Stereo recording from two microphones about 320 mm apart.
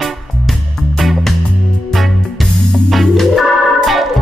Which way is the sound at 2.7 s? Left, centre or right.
Centre.